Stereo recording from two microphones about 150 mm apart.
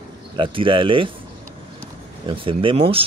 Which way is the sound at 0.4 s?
35° right (ahead or behind).